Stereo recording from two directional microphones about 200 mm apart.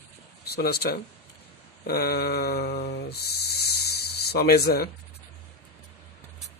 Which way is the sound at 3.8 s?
55° left (ahead or behind).